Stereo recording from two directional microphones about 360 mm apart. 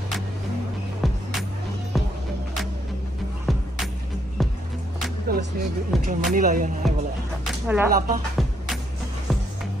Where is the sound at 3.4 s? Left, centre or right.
Centre.